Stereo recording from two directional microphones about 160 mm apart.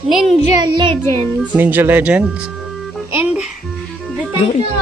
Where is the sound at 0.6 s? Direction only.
30° right (ahead or behind).